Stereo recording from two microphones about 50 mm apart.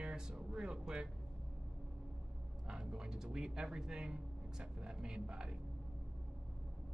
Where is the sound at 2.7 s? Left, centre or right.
Centre.